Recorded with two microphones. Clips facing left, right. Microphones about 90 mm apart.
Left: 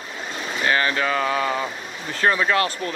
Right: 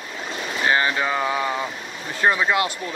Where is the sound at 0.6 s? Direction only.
20° right (ahead or behind).